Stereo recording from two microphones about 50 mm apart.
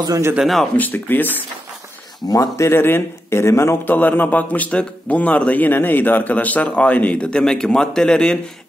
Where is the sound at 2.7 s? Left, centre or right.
Left.